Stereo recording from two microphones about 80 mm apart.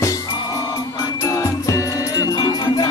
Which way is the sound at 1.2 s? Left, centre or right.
Left.